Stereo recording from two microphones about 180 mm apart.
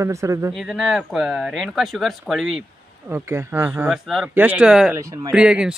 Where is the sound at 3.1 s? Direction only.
15° right (ahead or behind).